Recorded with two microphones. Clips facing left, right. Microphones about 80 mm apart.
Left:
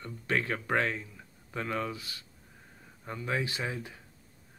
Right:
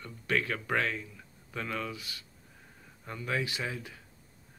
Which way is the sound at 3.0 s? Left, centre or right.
Centre.